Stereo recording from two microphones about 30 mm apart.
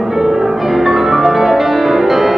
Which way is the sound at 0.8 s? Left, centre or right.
Centre.